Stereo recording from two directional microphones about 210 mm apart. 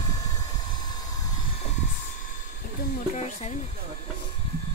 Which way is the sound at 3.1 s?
30° left (ahead or behind).